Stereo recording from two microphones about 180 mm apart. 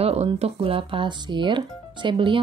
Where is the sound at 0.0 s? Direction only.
35° right (ahead or behind).